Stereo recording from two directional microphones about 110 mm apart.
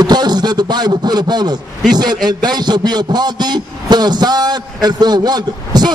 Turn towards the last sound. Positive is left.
turn(degrees=-40)  # may be behind; listen again after turning